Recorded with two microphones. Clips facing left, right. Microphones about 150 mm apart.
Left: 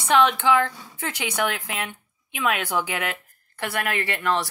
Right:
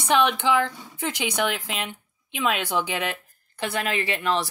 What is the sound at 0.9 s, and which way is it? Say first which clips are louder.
A woman's voice: right 2 dB; 20° right (ahead or behind).